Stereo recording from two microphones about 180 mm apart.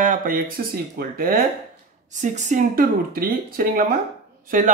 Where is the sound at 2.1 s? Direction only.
40° right (ahead or behind).